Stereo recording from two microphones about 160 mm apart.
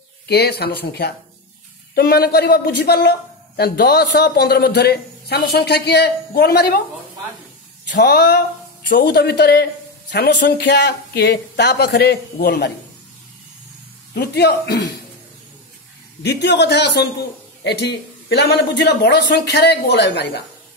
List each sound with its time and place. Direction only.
0.3 s a man's voice: 90° left
2.0 s a man's voice: 75° left (ahead or behind)
8.0 s a man's voice: 85° left
14.1 s a man's voice: 90° left
16.2 s a man's voice: 90° left